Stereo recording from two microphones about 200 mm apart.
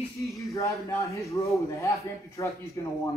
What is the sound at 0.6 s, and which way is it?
A man's voice, 15° left (ahead or behind).